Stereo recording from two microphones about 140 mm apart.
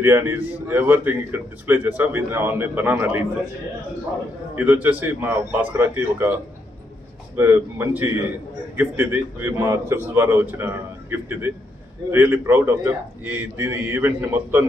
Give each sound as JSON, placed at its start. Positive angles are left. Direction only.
{"t": 0.0, "sound": "a man's voice", "side_deg": -15}
{"t": 4.6, "sound": "a man's voice", "side_deg": -15}
{"t": 7.3, "sound": "a man's voice", "side_deg": -20}